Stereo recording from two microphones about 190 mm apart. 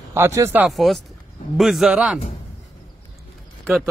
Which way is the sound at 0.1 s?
15° right (ahead or behind).